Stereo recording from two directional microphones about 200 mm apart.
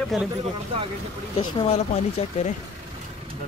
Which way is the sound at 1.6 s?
30° left (ahead or behind).